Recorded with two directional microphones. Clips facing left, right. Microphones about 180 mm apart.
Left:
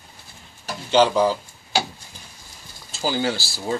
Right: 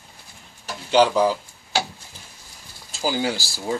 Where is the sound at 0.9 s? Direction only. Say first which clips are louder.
Even; 10° right (ahead or behind).